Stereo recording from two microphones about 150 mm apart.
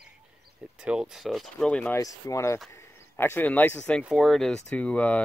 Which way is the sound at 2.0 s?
20° left (ahead or behind).